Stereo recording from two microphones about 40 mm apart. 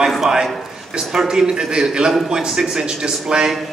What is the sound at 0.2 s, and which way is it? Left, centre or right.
A man's voice, centre.